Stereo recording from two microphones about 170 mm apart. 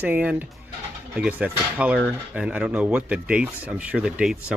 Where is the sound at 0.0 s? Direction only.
10° right (ahead or behind).